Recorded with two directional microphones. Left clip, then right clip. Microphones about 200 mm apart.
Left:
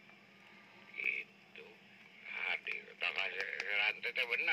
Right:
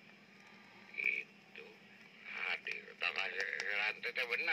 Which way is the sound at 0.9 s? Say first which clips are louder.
Right 1 dB; 25° right (ahead or behind).